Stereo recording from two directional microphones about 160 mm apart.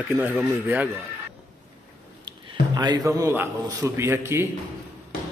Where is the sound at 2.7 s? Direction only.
25° right (ahead or behind).